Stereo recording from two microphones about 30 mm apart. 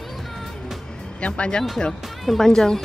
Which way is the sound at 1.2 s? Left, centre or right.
Left.